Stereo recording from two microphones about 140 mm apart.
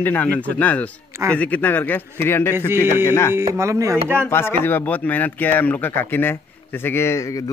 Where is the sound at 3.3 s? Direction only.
20° right (ahead or behind).